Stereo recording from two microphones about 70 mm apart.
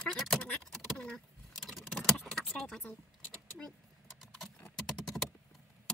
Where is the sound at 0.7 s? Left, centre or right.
Centre.